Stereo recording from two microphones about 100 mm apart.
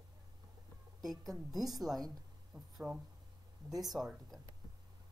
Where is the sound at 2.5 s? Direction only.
35° right (ahead or behind).